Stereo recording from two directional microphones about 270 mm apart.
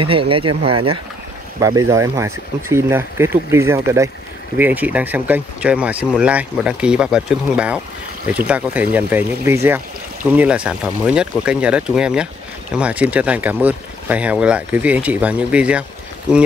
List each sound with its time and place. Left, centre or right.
0.0 s speech: centre
0.5 s speech: right
1.6 s speech: centre